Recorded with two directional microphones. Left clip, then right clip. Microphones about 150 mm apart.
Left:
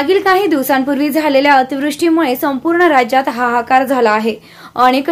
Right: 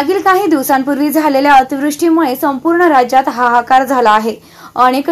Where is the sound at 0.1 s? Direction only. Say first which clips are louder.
Right 1 dB; 5° left (ahead or behind).